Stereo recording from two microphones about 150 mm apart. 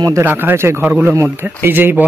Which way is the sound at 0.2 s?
15° right (ahead or behind).